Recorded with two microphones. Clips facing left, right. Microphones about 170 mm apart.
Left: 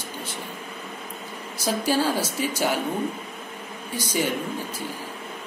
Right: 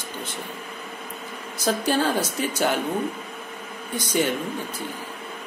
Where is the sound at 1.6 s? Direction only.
10° left (ahead or behind).